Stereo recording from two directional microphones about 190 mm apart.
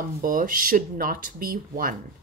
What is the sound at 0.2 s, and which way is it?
A woman's voice, 45° right (ahead or behind).